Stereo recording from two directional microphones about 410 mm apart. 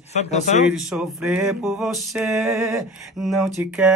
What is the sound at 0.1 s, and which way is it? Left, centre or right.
Speech, centre.